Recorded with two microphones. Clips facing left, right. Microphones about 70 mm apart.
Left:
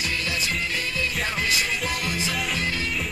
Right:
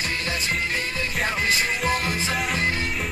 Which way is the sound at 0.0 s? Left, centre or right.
Right.